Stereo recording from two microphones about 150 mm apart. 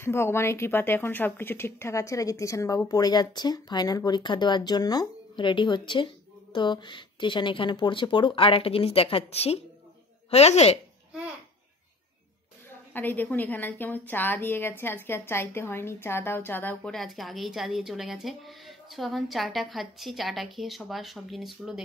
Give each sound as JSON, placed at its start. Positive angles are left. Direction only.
{"t": 0.0, "sound": "a woman's voice", "side_deg": 15}
{"t": 12.6, "sound": "a woman's voice", "side_deg": 10}